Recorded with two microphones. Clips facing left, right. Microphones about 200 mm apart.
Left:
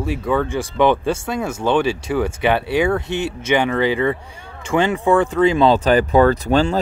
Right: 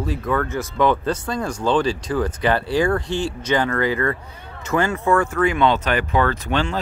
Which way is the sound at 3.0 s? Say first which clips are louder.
Left 1 dB; 20° left (ahead or behind).